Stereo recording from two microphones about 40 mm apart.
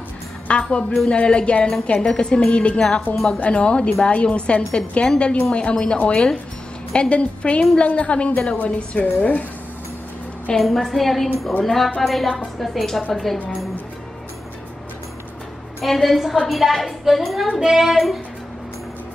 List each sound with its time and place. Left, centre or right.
0.5 s a woman's voice: left
10.6 s a woman's voice: centre
15.8 s a woman's voice: centre
17.6 s child singing: centre
17.9 s a woman's voice: centre